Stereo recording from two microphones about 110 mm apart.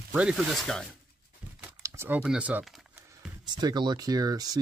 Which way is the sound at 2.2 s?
10° right (ahead or behind).